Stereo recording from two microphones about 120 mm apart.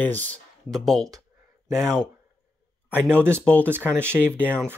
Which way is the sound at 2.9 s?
20° right (ahead or behind).